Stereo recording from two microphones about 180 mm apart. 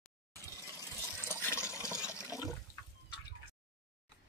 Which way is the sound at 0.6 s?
15° right (ahead or behind).